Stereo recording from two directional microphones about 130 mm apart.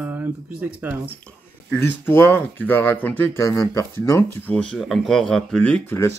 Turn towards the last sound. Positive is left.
turn(degrees=10)  # may be behind; listen again after turning